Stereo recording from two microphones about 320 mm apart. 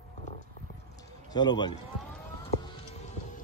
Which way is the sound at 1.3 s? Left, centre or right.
Centre.